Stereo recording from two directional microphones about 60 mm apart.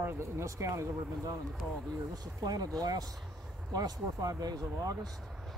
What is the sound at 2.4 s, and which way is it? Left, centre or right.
Speech, right.